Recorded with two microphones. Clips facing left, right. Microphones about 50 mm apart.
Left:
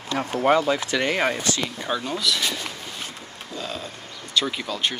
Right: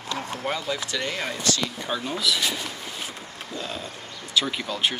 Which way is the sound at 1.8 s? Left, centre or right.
Centre.